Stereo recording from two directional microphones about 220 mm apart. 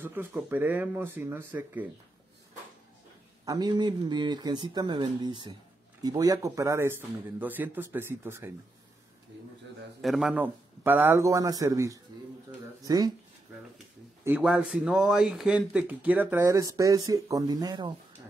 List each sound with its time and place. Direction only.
0.0 s speech: 10° right (ahead or behind)
3.4 s speech: 20° right (ahead or behind)
10.0 s speech: centre (ahead or behind)
12.4 s a sound: 15° right (ahead or behind)
14.2 s speech: 5° right (ahead or behind)